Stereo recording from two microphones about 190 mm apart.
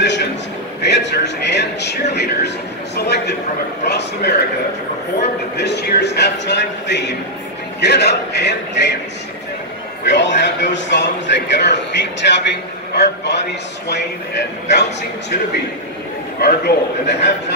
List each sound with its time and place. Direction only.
0.0 s a sound: 65° left (ahead or behind)
0.8 s a man's voice: 65° left (ahead or behind)
5.6 s a man's voice: 65° left (ahead or behind)
10.0 s a man's voice: 65° left (ahead or behind)
14.7 s a man's voice: 65° left (ahead or behind)
16.3 s a man's voice: 55° left (ahead or behind)